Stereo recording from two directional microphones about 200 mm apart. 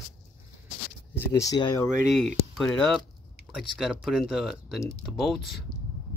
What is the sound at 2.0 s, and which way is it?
Speech, centre (ahead or behind).